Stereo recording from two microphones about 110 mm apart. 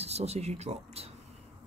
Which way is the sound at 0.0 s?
75° right (ahead or behind).